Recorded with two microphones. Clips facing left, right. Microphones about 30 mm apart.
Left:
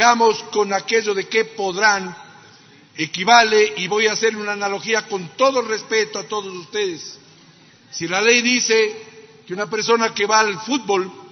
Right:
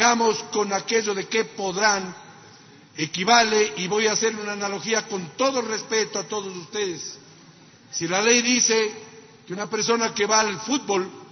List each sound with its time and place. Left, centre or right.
0.0 s a man's voice: centre